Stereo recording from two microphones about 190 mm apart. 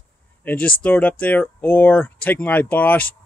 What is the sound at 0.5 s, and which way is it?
Speech, 5° left (ahead or behind).